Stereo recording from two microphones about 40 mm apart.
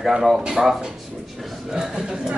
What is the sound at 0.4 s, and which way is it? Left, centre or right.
A man's voice, centre.